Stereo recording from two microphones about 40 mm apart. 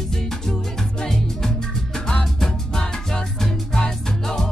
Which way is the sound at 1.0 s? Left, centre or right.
Centre.